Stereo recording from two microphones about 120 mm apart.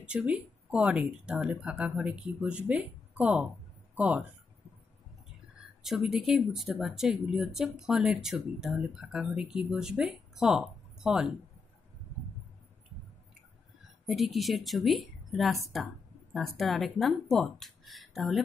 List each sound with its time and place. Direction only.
0.0 s speech: 10° right (ahead or behind)
5.9 s speech: 5° right (ahead or behind)
14.0 s speech: centre (ahead or behind)